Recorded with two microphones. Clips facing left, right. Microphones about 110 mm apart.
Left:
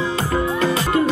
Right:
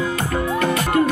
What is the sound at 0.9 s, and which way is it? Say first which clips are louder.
Music: right 1 dB; 25° left (ahead or behind).